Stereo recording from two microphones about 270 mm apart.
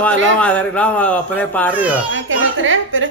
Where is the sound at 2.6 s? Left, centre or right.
Right.